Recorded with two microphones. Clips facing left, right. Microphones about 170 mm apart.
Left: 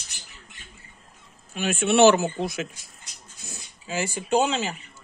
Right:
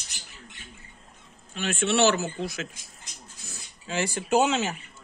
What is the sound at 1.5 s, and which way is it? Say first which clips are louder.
Speech: left 3 dB; 15° left (ahead or behind).